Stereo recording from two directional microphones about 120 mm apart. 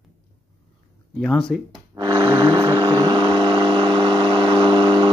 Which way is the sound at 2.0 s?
40° right (ahead or behind).